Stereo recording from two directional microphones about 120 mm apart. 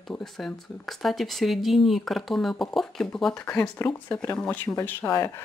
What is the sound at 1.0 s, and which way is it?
Speech, centre (ahead or behind).